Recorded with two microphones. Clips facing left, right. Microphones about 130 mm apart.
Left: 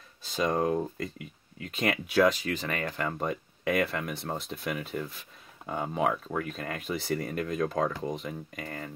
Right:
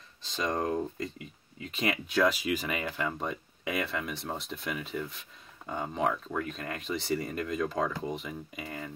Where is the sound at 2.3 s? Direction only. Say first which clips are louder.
Right 1 dB; 10° right (ahead or behind).